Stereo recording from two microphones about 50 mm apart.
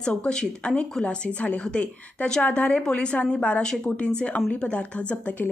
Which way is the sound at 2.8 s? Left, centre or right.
Centre.